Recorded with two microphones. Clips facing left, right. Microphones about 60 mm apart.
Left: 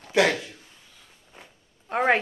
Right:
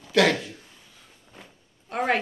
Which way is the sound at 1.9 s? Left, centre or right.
Left.